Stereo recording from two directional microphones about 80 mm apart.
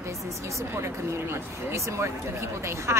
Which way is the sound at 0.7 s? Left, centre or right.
Right.